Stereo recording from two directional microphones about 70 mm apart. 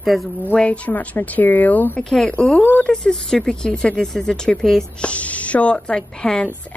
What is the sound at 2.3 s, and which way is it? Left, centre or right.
Speech, centre.